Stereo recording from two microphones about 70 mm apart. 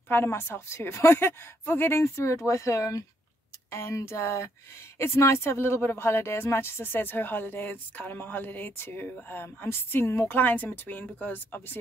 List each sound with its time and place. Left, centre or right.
0.1 s a woman's voice: left
3.7 s speech: left